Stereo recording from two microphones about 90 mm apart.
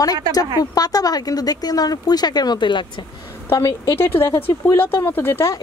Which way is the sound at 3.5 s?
40° left (ahead or behind).